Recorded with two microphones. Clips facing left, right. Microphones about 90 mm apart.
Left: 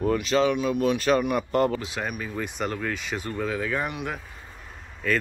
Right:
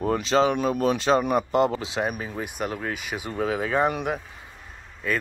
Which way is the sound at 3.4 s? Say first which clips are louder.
Right 6 dB; 20° right (ahead or behind).